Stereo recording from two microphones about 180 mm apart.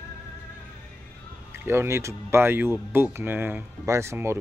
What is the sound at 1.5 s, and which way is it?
Speech, 15° right (ahead or behind).